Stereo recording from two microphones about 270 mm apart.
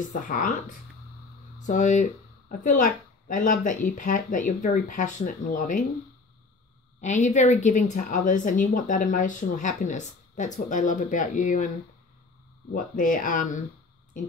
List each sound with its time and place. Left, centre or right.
0.0 s a woman's voice: left
7.0 s a woman's voice: left
12.7 s a woman's voice: left